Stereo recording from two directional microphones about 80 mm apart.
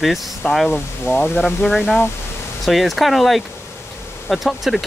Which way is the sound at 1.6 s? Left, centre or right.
Centre.